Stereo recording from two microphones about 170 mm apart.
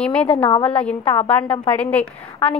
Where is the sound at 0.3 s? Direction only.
35° left (ahead or behind).